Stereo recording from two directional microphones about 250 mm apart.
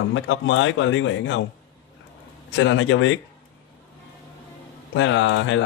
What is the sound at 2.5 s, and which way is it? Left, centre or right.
Speech, left.